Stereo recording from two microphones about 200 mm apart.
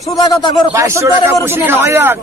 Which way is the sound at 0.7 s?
15° right (ahead or behind).